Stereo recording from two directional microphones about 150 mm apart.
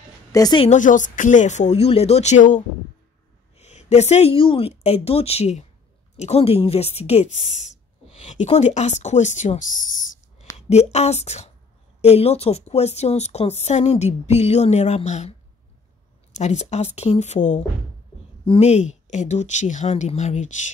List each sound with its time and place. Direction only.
0.3 s a woman's voice: 25° left (ahead or behind)
0.7 s a woman's voice: 55° left (ahead or behind)
10.7 s a woman's voice: 45° left (ahead or behind)
16.3 s a woman's voice: 50° left (ahead or behind)